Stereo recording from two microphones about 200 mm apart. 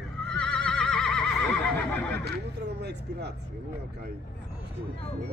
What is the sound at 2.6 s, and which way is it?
Speech, 55° right (ahead or behind).